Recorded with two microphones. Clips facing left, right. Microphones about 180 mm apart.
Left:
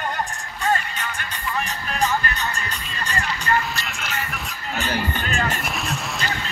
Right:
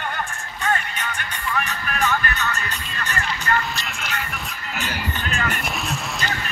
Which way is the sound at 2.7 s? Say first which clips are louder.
Even; 5° right (ahead or behind).